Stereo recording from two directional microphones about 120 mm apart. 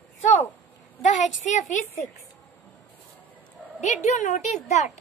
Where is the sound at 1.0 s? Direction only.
90° left.